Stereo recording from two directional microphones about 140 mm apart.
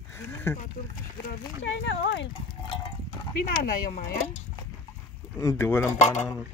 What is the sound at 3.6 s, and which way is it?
Speech, 75° left (ahead or behind).